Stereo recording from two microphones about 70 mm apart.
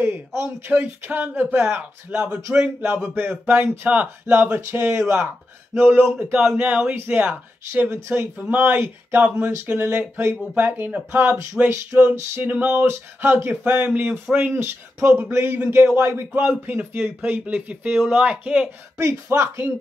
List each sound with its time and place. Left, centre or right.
0.7 s speech: right
4.6 s speech: right; by 7.3 s centre
7.7 s speech: right
14.5 s speech: right
18.9 s speech: right